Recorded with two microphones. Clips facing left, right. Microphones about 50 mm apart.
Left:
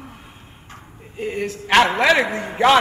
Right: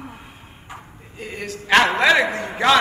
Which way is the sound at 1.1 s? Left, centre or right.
Centre.